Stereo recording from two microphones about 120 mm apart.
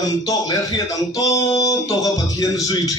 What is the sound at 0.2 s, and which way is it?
A man's voice, 30° left (ahead or behind).